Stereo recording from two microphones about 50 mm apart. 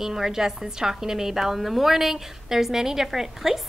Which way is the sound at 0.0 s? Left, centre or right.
Centre.